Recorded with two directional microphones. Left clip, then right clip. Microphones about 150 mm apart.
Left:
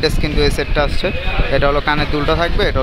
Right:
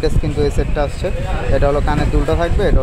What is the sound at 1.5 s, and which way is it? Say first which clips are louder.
Speech: left 1 dB; 20° left (ahead or behind).